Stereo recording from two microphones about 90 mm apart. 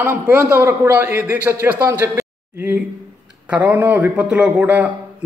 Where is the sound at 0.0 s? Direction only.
25° right (ahead or behind).